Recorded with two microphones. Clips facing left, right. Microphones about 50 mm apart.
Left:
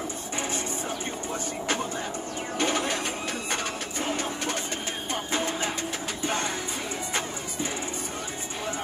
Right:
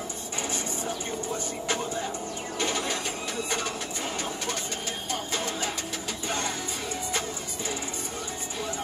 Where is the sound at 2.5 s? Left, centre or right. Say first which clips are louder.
Left 3 dB; left.